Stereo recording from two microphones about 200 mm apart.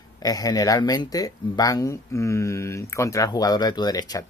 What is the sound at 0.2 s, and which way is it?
Speech, 20° left (ahead or behind).